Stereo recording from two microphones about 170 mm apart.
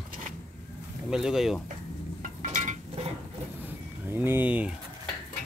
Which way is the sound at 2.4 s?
45° right (ahead or behind).